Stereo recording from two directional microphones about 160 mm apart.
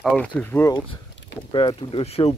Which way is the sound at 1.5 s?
30° left (ahead or behind).